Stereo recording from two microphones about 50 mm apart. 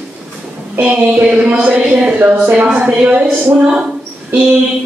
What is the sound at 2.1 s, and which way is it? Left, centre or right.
Speech, right.